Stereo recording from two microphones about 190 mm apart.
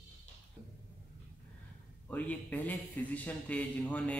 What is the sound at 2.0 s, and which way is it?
A man's voice, 10° left (ahead or behind).